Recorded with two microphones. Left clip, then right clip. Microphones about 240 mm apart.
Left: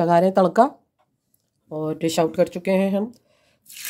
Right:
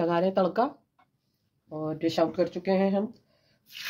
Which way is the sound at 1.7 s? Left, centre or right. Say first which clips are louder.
Left 5 dB; left.